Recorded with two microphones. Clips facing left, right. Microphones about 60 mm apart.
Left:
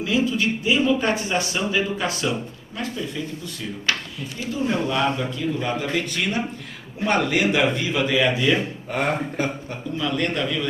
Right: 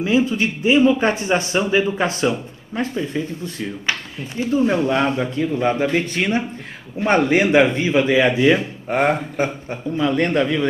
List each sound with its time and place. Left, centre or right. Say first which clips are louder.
0.0 s a man's voice: right 4 dB; right